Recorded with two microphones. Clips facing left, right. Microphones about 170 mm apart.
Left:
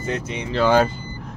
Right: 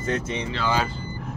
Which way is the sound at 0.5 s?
50° left (ahead or behind).